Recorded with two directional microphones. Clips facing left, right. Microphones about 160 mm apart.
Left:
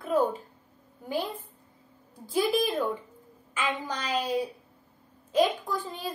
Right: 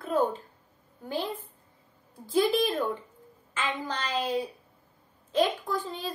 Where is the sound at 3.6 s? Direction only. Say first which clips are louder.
Left 1 dB; 15° left (ahead or behind).